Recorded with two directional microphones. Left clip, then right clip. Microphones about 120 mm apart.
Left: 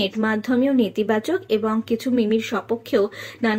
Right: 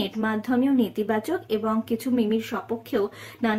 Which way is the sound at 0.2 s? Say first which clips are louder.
Left 2 dB; 20° left (ahead or behind).